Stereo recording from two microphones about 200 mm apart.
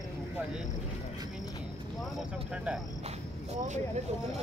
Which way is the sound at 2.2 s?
5° right (ahead or behind).